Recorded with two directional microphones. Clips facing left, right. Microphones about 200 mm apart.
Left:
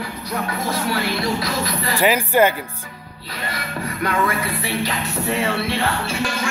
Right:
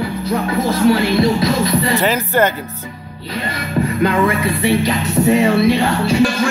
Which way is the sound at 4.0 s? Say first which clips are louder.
Right 5 dB; 25° right (ahead or behind).